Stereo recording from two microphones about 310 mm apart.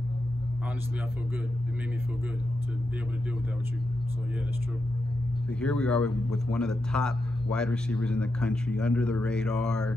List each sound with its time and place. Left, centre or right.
5.6 s a man's voice: centre